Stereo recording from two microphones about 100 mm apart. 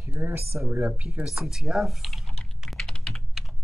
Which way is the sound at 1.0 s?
5° right (ahead or behind).